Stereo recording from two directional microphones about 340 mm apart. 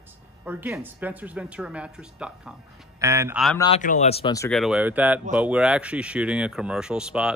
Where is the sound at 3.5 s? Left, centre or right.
Centre.